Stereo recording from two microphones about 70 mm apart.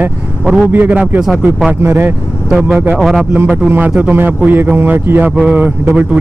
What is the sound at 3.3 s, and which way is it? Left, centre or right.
Speech, right.